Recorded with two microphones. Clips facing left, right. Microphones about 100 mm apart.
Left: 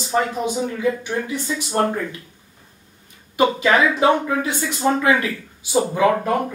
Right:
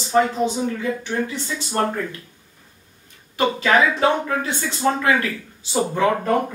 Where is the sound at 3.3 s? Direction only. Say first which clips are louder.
Left 1 dB; 15° left (ahead or behind).